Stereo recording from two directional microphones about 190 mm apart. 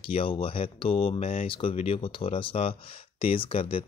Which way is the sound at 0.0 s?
30° left (ahead or behind).